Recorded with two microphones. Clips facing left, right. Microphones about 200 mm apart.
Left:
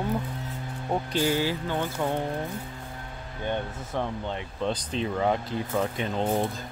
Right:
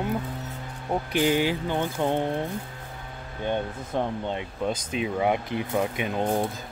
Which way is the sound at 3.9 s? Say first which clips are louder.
Right 3 dB; 15° right (ahead or behind).